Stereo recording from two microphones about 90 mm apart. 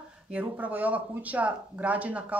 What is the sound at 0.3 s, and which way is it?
Speech, 15° right (ahead or behind).